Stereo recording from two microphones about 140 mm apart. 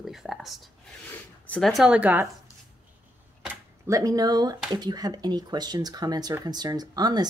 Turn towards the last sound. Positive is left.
turn(degrees=-30)  # may be behind; listen again after turning